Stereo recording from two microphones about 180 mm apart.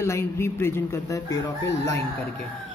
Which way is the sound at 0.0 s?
15° left (ahead or behind).